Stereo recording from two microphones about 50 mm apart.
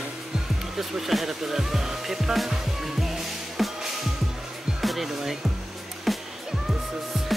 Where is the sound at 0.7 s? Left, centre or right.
Centre.